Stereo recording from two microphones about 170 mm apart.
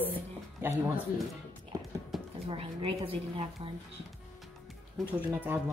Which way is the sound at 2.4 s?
30° right (ahead or behind).